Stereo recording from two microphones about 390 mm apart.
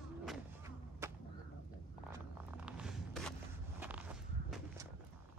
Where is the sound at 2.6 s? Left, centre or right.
Centre.